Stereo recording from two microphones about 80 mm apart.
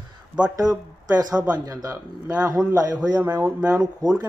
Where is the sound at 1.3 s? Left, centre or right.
Centre.